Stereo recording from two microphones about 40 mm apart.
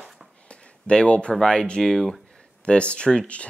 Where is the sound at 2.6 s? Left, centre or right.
Left.